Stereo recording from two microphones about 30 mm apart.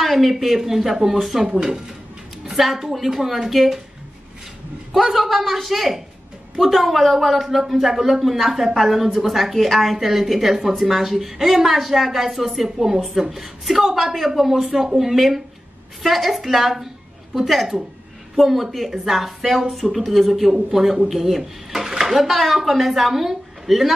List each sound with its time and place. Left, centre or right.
0.0 s a woman's voice: centre
1.4 s speech: right
2.6 s a woman's voice: centre
4.9 s a woman's voice: centre